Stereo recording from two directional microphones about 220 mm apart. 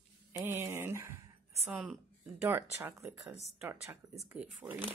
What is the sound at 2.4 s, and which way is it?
Speech, 10° right (ahead or behind).